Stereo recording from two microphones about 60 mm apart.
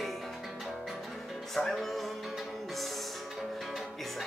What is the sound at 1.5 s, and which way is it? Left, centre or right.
Music, centre.